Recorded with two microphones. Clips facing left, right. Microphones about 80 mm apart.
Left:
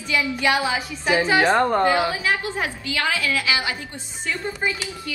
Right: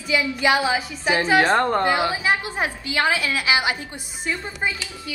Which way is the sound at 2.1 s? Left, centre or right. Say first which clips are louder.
Right 1 dB; right.